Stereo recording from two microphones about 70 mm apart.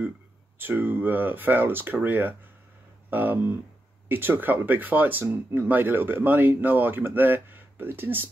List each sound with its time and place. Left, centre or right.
0.6 s speech: right